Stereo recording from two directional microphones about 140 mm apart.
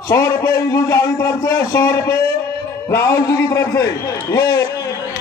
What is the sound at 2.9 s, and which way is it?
A man's voice, 20° left (ahead or behind).